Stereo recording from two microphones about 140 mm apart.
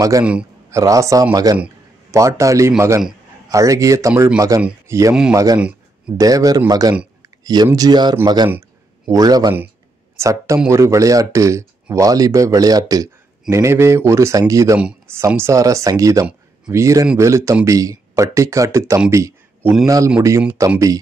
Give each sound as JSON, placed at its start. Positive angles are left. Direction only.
{"t": 0.2, "sound": "a man's voice", "side_deg": -10}
{"t": 0.7, "sound": "speech", "side_deg": -20}
{"t": 4.1, "sound": "a man's voice", "side_deg": -10}
{"t": 4.4, "sound": "speech", "side_deg": -25}
{"t": 14.8, "sound": "speech", "side_deg": -10}
{"t": 15.1, "sound": "speech", "side_deg": -20}